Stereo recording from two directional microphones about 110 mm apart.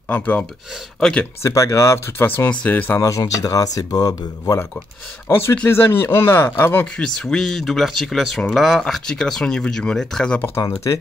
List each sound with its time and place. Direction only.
0.1 s speech: 15° left (ahead or behind)
1.4 s speech: 30° left (ahead or behind)
3.0 s speech: 30° left (ahead or behind)
5.3 s speech: 20° left (ahead or behind)
7.2 s speech: 5° left (ahead or behind)